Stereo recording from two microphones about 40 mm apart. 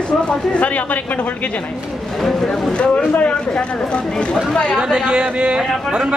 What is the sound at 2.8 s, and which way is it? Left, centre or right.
Speech, left.